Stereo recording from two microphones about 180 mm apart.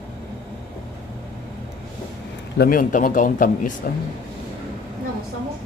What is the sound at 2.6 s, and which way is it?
Speech, 50° left (ahead or behind).